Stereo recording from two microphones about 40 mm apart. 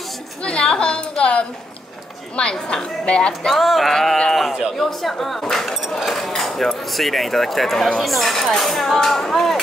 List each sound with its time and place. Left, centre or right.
0.4 s a sound: left
3.1 s speech: left
3.4 s speech: centre